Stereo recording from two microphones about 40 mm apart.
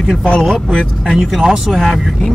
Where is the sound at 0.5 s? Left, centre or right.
Centre.